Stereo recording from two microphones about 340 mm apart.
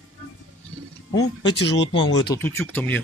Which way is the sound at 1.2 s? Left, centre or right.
Centre.